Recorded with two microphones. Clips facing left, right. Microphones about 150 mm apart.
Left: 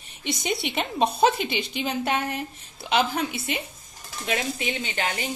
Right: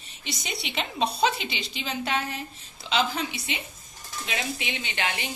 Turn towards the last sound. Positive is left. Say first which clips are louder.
# left 2 dB
turn(degrees=40)  # may be behind; listen again after turning